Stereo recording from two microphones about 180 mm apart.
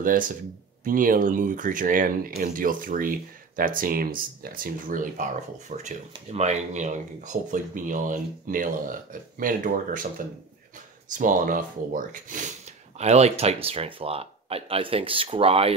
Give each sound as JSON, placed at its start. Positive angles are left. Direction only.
{"t": 0.0, "sound": "speech", "side_deg": -50}
{"t": 12.9, "sound": "speech", "side_deg": -35}